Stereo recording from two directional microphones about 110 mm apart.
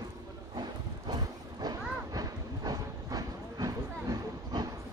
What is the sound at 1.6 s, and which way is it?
Train, 35° right (ahead or behind).